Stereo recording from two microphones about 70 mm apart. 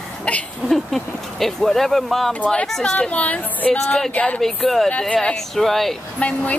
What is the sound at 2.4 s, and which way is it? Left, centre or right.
A woman's voice, centre.